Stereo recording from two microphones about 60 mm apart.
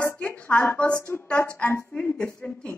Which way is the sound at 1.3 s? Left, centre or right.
Left.